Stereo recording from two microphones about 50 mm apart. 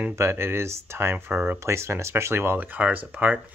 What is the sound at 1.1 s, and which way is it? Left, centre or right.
Speech, right.